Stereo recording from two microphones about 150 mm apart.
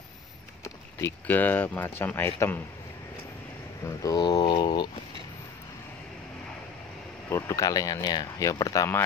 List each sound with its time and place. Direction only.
1.0 s speech: 10° left (ahead or behind)
4.0 s a sound: 25° left (ahead or behind)
7.2 s speech: 20° left (ahead or behind)